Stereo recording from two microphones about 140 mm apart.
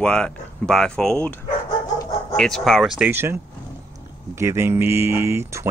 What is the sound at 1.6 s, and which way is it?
Dog, 25° left (ahead or behind).